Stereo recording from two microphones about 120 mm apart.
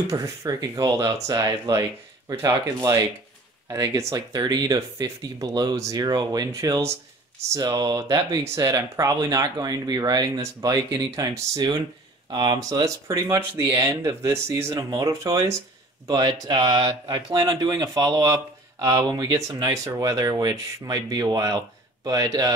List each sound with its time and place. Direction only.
0.1 s speech: 25° right (ahead or behind)